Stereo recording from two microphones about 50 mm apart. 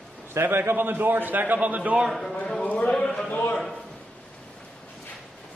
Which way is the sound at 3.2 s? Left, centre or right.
Left.